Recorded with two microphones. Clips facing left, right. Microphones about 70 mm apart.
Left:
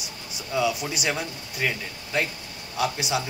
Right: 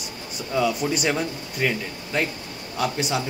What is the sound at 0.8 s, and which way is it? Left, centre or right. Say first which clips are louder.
A man's voice: right 5 dB; centre.